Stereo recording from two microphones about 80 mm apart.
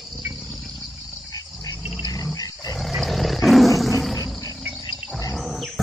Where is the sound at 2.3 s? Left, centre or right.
Left.